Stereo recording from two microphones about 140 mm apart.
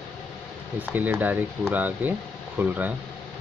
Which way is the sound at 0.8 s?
10° right (ahead or behind).